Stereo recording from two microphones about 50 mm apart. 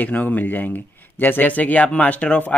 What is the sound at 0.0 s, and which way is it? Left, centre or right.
Speech, left.